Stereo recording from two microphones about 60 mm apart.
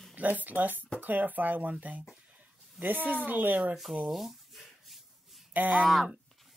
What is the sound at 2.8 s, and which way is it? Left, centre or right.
Child singing, centre.